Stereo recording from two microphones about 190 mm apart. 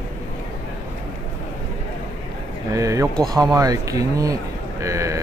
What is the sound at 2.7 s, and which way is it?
Speech, 15° right (ahead or behind).